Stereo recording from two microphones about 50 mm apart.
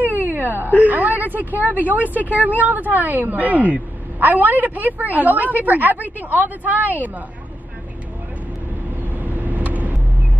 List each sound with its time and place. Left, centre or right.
0.2 s speech: right
9.2 s vehicle: right